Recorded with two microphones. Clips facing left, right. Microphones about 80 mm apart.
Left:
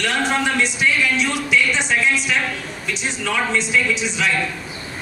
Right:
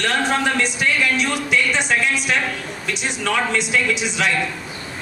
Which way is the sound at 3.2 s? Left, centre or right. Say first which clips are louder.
Right 1 dB; right.